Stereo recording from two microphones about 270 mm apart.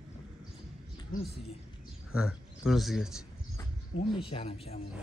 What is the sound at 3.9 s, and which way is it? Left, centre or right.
Speech, left.